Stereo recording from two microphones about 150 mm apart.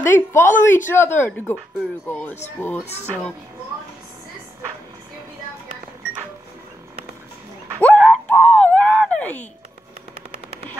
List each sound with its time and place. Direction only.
0.0 s a woman's voice: 15° left (ahead or behind)
7.8 s a sound: 5° left (ahead or behind)
10.1 s machine gun: 40° right (ahead or behind)